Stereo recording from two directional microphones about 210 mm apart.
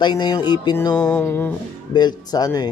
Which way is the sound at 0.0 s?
20° left (ahead or behind).